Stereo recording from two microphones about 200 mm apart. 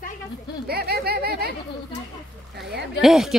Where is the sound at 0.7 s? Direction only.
50° right (ahead or behind).